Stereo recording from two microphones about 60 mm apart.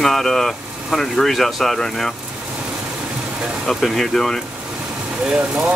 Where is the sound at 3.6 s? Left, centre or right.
Centre.